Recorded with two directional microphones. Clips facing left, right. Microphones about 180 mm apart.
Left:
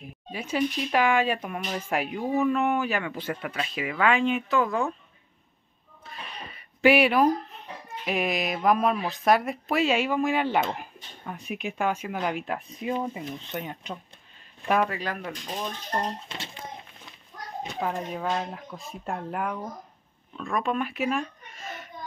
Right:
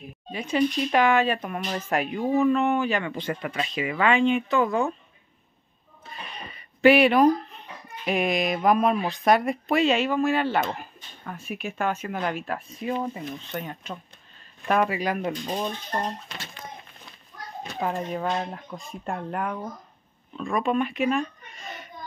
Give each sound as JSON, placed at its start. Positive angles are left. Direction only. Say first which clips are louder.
{"t": 0.3, "sound": "speech", "louder": "right 3 dB", "side_deg": 5}
{"t": 6.0, "sound": "speech", "louder": "right 1 dB", "side_deg": 5}
{"t": 14.9, "sound": "speech", "louder": "right 6 dB", "side_deg": -15}
{"t": 16.3, "sound": "speech", "louder": "left 1 dB", "side_deg": 25}
{"t": 17.7, "sound": "speech", "louder": "right 3 dB", "side_deg": 0}